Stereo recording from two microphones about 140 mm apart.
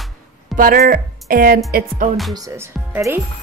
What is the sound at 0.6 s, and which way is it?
Speech, 90° right.